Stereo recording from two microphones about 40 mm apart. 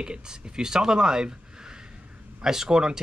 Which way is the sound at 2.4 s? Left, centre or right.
Centre.